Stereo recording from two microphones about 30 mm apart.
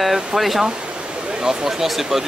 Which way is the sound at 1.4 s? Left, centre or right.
Centre.